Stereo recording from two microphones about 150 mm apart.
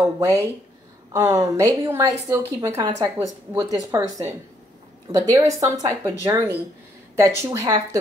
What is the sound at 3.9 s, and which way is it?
Speech, 25° right (ahead or behind).